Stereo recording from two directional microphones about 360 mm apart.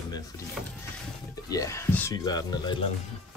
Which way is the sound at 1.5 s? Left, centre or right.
Centre.